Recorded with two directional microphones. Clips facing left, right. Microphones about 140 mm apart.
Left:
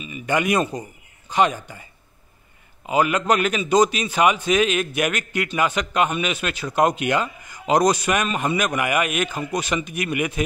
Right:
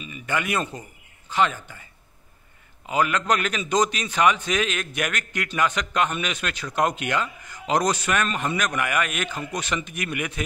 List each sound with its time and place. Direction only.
0.0 s a man's voice: 15° left (ahead or behind)
2.9 s a man's voice: 10° left (ahead or behind)